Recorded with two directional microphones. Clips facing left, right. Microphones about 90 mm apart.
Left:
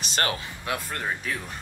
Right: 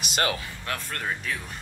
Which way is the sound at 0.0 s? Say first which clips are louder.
Right 1 dB; 35° left (ahead or behind).